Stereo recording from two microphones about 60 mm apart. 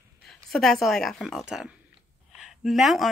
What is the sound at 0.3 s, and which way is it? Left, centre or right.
Speech, centre.